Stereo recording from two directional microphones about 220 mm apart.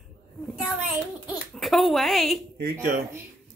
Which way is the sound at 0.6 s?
Centre (ahead or behind).